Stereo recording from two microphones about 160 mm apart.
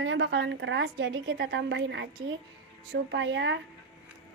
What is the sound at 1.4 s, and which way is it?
A woman's voice, 90° right.